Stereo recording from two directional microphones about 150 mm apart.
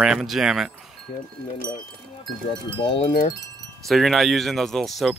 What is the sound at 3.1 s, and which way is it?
Wind chime, 75° left (ahead or behind).